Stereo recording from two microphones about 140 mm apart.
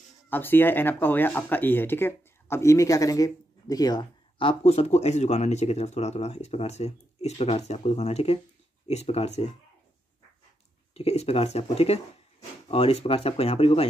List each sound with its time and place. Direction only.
0.3 s speech: 15° left (ahead or behind); by 9.5 s 50° left (ahead or behind)
11.0 s speech: 50° left (ahead or behind)